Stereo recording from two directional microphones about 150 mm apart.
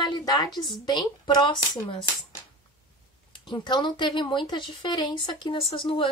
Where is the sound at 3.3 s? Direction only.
30° left (ahead or behind).